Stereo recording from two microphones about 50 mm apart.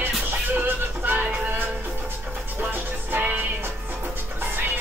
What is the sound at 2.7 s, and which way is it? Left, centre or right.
Music, right.